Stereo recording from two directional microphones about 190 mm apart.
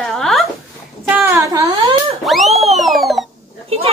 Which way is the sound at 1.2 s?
15° right (ahead or behind).